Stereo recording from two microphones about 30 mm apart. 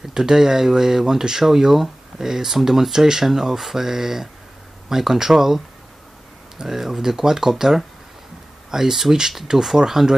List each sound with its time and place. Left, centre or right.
0.1 s speech: centre
6.6 s speech: centre